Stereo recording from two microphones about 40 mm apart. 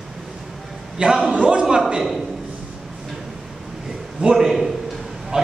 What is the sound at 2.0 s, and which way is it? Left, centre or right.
Speech, centre.